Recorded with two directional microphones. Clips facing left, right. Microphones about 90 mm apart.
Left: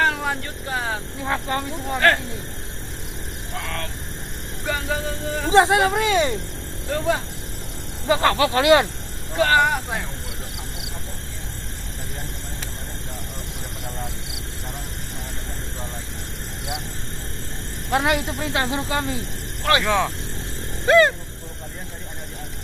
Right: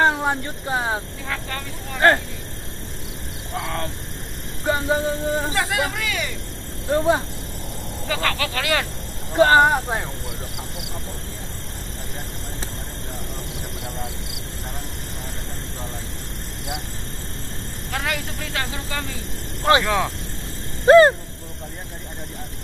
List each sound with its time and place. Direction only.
0.0 s speech: 25° right (ahead or behind)
1.2 s speech: 30° left (ahead or behind)
3.5 s music: 25° right (ahead or behind)
5.5 s speech: 25° left (ahead or behind)
6.9 s music: 25° right (ahead or behind)
8.1 s speech: 25° left (ahead or behind)
9.4 s speech: 30° right (ahead or behind)
17.9 s speech: 20° left (ahead or behind)
19.8 s speech: centre (ahead or behind)
20.8 s dog: 35° right (ahead or behind)